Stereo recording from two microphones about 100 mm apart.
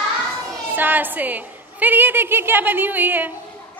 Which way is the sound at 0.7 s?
20° right (ahead or behind).